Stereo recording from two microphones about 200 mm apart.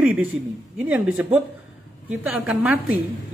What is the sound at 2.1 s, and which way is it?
Speech, 5° right (ahead or behind).